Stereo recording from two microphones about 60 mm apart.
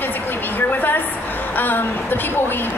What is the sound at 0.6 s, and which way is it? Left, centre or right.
A woman's voice, left.